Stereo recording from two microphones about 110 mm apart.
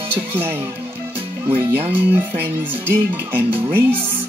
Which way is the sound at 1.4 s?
20° right (ahead or behind).